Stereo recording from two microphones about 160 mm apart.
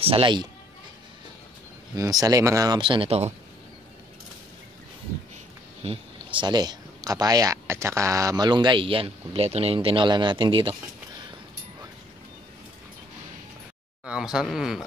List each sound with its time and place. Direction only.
0.0 s speech: 35° right (ahead or behind)
2.0 s speech: 20° right (ahead or behind); by 3.3 s 40° right (ahead or behind)
5.9 s speech: 30° right (ahead or behind)
14.0 s speech: 5° right (ahead or behind)